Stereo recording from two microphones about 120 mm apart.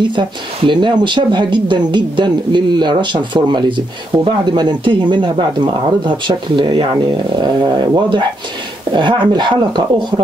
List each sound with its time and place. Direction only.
0.0 s speech: 45° right (ahead or behind)